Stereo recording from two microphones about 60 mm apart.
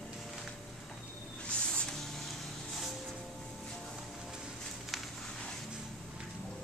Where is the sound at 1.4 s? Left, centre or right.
Centre.